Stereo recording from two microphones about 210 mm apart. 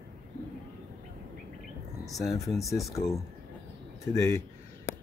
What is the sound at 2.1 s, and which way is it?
Speech, 15° left (ahead or behind).